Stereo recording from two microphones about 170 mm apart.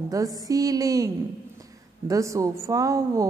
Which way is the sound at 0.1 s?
20° right (ahead or behind).